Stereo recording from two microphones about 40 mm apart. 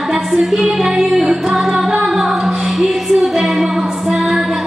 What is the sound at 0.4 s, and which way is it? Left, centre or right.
Music, centre.